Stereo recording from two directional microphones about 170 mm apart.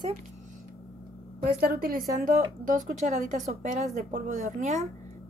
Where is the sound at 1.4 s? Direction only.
60° right (ahead or behind).